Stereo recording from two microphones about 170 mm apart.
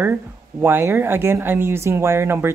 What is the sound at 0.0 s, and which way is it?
Speech, 10° right (ahead or behind).